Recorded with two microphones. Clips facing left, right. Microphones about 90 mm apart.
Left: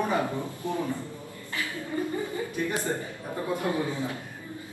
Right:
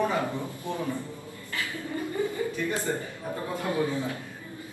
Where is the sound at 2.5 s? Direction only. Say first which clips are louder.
Even; 20° left (ahead or behind).